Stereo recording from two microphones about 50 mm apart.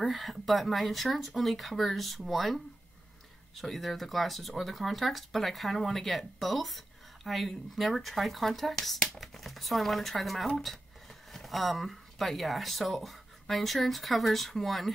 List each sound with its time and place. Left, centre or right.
0.1 s speech: centre